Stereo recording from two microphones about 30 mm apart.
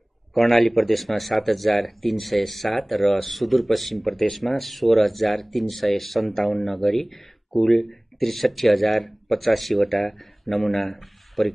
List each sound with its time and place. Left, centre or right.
0.3 s speech: centre